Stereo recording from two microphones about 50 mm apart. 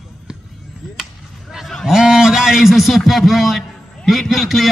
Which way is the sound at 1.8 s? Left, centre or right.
Centre.